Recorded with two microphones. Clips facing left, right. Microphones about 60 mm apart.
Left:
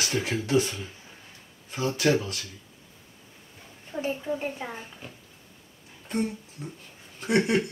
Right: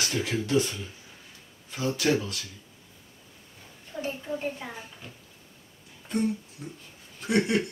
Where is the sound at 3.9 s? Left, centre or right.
Centre.